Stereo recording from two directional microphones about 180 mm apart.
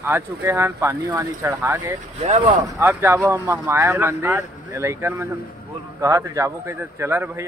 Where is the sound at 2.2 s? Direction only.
35° right (ahead or behind).